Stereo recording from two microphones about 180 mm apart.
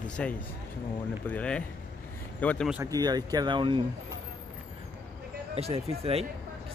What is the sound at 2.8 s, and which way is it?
Speech, 20° right (ahead or behind).